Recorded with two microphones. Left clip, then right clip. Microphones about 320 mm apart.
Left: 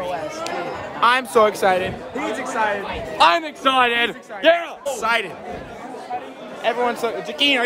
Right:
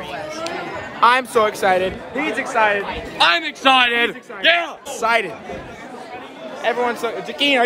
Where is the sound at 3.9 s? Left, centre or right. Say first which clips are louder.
Right 2 dB; centre.